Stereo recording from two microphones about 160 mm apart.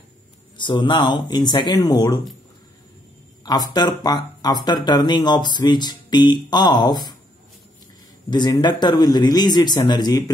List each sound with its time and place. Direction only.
0.6 s speech: 30° left (ahead or behind)
3.4 s speech: 25° left (ahead or behind)
8.3 s speech: 25° left (ahead or behind)